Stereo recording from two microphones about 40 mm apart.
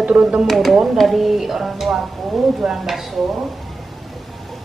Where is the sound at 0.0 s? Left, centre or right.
Right.